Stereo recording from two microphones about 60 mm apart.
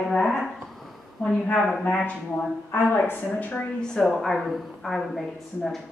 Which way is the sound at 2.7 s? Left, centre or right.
Left.